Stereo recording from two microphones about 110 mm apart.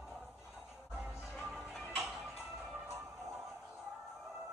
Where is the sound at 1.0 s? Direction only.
5° right (ahead or behind).